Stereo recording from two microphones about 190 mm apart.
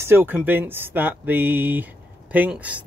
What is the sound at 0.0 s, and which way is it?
Speech, 10° right (ahead or behind).